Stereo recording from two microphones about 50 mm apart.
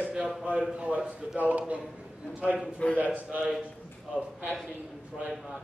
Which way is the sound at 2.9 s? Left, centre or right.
Right.